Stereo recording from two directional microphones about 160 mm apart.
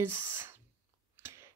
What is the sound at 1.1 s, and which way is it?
Chewing, 15° right (ahead or behind).